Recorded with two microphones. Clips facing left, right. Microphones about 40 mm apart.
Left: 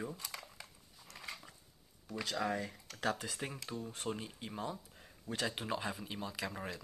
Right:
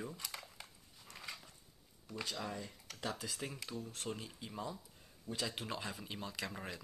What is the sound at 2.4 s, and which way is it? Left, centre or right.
Speech, left.